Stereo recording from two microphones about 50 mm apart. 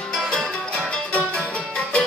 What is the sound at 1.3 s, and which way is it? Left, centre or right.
Music, centre.